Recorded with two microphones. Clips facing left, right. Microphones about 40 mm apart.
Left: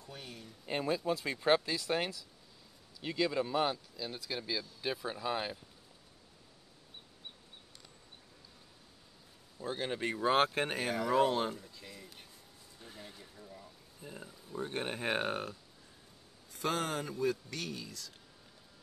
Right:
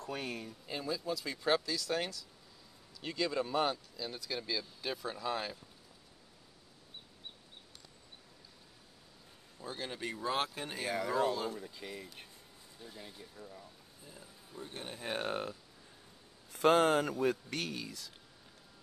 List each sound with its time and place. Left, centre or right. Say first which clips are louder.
0.0 s speech: right 8 dB; right
0.7 s speech: left 5 dB; left
3.0 s speech: left 2 dB; centre
9.6 s speech: left 5 dB; left
11.7 s a man's voice: right 5 dB; right
13.4 s speech: right 3 dB; centre
14.0 s speech: left 7 dB; left
16.4 s a man's voice: right 8 dB; right